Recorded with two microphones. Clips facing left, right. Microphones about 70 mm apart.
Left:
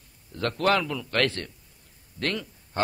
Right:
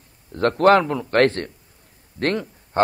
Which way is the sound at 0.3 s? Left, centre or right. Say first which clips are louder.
Right 9 dB; right.